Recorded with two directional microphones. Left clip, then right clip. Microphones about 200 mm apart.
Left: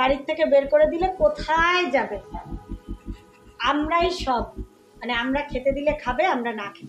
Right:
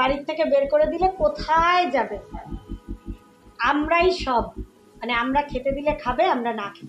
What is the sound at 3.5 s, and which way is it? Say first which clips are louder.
A woman's voice: right 2 dB; 25° right (ahead or behind).